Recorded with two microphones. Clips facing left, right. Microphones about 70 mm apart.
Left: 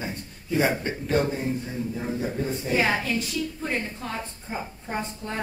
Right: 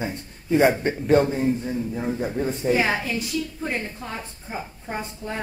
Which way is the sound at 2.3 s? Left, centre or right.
Centre.